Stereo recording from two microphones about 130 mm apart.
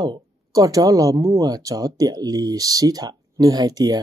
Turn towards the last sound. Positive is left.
turn(degrees=-30)  # may be behind; listen again after turning